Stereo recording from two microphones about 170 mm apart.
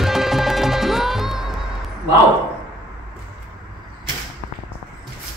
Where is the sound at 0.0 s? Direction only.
Centre (ahead or behind).